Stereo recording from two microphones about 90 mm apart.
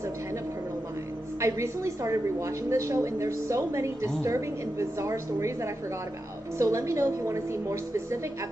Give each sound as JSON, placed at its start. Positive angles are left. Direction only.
{"t": 1.4, "sound": "a woman's voice", "side_deg": -35}